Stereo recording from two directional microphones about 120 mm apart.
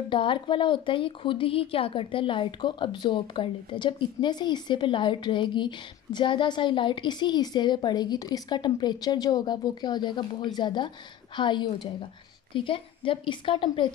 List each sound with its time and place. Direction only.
0.1 s a woman's voice: 45° left (ahead or behind)